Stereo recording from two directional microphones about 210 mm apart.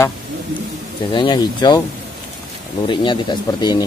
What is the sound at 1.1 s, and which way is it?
Speech, 20° left (ahead or behind).